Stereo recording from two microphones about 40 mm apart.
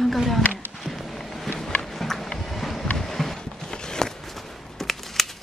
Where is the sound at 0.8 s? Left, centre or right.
Centre.